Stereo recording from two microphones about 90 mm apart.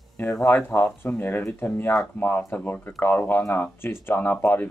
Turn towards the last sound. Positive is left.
turn(degrees=20)  # may be behind; listen again after turning